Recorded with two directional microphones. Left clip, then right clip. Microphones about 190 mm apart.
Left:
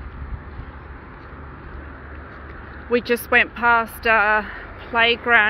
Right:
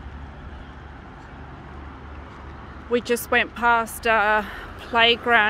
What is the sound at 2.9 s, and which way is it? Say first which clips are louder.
Speech: left 3 dB; centre (ahead or behind).